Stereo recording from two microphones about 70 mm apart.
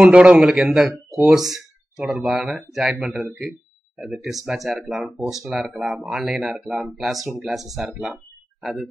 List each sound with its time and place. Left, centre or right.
0.0 s a man's voice: centre
0.5 s a man's voice: centre